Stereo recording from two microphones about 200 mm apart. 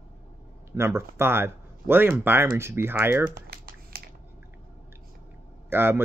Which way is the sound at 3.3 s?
50° right (ahead or behind).